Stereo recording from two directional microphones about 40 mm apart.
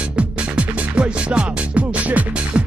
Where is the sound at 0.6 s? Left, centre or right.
Right.